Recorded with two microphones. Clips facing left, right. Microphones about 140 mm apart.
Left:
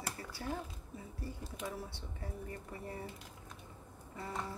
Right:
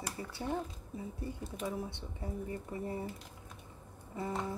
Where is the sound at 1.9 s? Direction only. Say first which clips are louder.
Right 5 dB; 20° right (ahead or behind).